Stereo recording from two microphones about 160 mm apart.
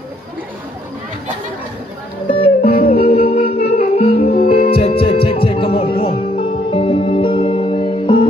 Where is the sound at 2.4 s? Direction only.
40° left (ahead or behind).